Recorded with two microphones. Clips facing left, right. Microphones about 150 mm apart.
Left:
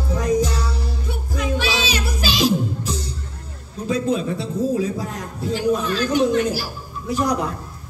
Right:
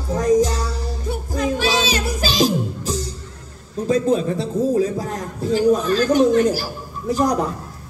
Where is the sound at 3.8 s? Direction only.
40° right (ahead or behind).